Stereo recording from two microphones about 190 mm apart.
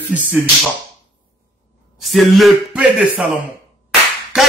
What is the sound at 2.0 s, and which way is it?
Speech, centre (ahead or behind).